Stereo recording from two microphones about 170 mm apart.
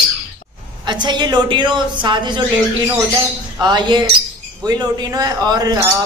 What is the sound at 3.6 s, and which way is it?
Speech, 25° right (ahead or behind).